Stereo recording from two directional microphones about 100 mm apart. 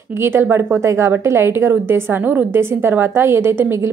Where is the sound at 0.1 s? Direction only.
25° right (ahead or behind).